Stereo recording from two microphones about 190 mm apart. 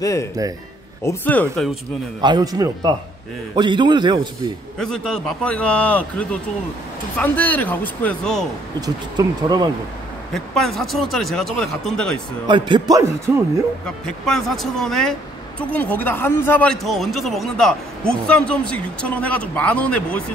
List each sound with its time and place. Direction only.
0.0 s speech: 15° left (ahead or behind)
2.2 s speech: 20° right (ahead or behind)
4.7 s speech: 5° left (ahead or behind)
8.8 s speech: 20° right (ahead or behind)
10.3 s speech: centre (ahead or behind)
12.4 s speech: 25° right (ahead or behind)
14.0 s speech: centre (ahead or behind)